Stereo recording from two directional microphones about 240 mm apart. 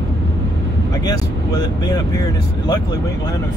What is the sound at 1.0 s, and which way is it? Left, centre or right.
Speech, centre.